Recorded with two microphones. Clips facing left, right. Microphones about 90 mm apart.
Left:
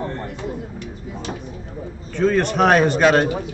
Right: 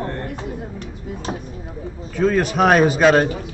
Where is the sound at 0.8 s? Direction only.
40° right (ahead or behind).